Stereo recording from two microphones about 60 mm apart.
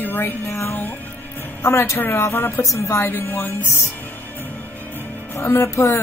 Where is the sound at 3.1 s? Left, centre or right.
Left.